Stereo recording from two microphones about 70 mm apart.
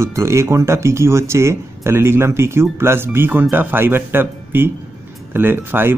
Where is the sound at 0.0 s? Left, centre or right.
Right.